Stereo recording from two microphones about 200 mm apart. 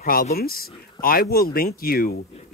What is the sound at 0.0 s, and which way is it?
Speech, 45° left (ahead or behind).